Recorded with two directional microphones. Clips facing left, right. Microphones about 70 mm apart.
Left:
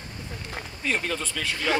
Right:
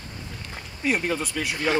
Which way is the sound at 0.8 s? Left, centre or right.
Centre.